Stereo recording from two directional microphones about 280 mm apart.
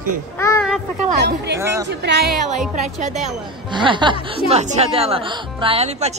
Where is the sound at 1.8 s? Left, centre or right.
Right.